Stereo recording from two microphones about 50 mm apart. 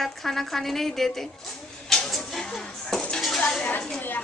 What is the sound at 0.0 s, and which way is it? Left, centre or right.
Speech, centre.